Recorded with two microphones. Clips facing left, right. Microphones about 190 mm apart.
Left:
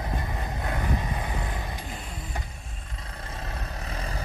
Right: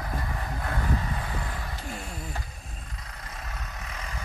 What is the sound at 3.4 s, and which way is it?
Vehicle, 30° left (ahead or behind).